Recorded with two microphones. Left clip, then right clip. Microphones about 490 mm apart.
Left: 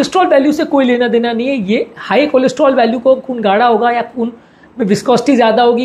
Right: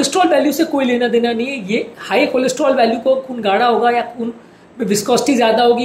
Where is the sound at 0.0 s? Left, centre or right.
Left.